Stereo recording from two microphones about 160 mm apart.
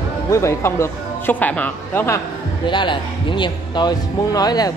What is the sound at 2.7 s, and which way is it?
A man's voice, 30° left (ahead or behind).